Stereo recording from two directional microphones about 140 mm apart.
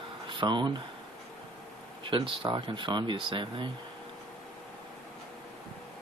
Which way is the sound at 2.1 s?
40° right (ahead or behind).